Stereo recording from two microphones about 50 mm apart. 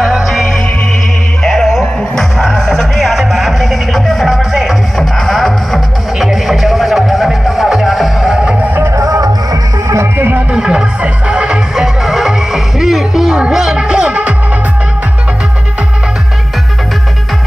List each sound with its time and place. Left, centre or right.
0.0 s music: centre
4.9 s music: centre
8.7 s music: right
10.5 s music: centre
11.7 s music: centre; by 14.3 s right